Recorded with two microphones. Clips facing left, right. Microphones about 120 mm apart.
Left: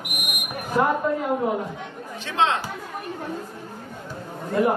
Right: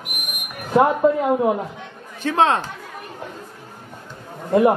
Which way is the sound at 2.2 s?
45° right (ahead or behind).